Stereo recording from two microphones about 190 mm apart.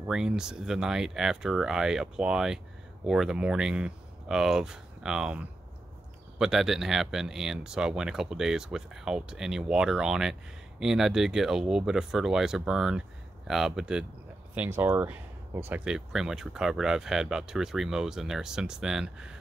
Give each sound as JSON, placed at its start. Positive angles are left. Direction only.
{"t": 0.1, "sound": "speech", "side_deg": -5}